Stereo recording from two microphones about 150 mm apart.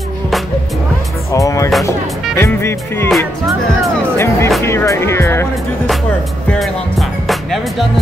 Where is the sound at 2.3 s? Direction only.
15° left (ahead or behind).